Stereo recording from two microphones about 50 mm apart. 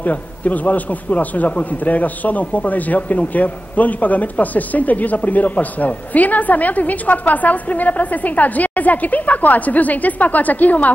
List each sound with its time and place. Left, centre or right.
0.0 s a man's voice: left